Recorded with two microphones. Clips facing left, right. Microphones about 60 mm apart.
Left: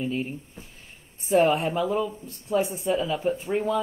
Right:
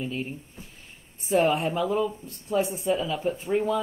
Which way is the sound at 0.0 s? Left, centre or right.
Centre.